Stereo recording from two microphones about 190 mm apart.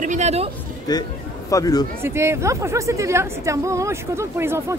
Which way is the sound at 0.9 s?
20° left (ahead or behind).